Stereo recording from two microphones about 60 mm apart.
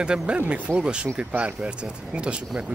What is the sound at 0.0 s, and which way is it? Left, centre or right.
Speech, centre.